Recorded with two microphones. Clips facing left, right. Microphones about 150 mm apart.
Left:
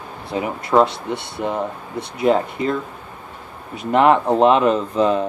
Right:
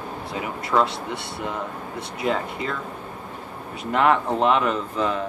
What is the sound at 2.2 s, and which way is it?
Speech, 25° left (ahead or behind).